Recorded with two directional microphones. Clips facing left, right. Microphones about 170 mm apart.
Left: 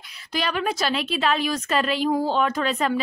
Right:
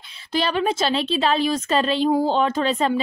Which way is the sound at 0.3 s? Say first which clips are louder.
Right 4 dB; 30° right (ahead or behind).